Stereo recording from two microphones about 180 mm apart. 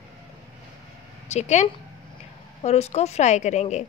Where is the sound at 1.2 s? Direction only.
40° left (ahead or behind).